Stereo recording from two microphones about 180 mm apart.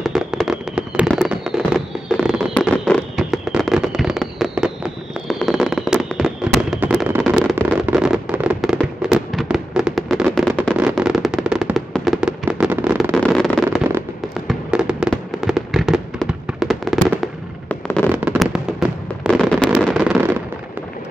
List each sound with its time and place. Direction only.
0.0 s fireworks: centre (ahead or behind)
13.1 s a sound: 5° left (ahead or behind)
14.5 s fireworks: 5° right (ahead or behind)
18.1 s fireworks: 10° right (ahead or behind)